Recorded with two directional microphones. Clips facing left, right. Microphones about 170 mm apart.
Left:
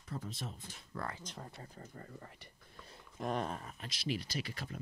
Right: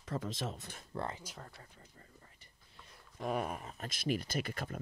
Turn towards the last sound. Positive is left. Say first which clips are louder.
# right 4 dB
turn(degrees=-50)  # may be behind; listen again after turning